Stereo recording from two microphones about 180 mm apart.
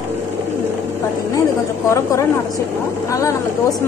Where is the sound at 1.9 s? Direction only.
15° left (ahead or behind).